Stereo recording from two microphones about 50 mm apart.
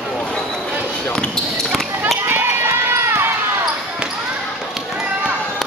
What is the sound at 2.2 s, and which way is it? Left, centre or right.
Basketball bounce, right.